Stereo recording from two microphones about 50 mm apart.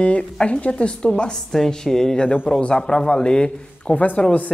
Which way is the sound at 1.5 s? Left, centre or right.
Centre.